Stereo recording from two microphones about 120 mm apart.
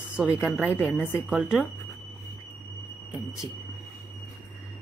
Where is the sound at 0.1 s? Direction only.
10° right (ahead or behind).